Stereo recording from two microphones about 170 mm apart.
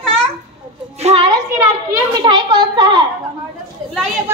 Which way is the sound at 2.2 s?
30° right (ahead or behind).